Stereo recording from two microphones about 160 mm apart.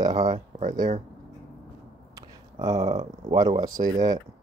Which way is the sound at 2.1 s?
25° right (ahead or behind).